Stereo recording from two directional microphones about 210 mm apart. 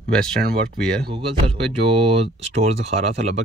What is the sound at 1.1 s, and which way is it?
Speech, 25° right (ahead or behind).